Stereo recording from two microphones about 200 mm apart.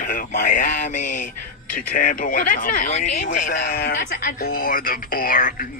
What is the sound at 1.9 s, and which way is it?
Speech, 45° left (ahead or behind).